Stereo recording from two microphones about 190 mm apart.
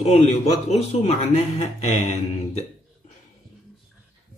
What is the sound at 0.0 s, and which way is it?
A man's voice, 35° left (ahead or behind).